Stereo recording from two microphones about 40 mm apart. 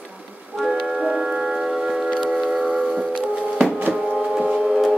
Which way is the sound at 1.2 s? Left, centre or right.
Centre.